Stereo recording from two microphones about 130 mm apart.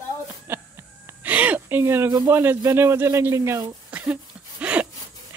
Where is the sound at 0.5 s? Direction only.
20° right (ahead or behind).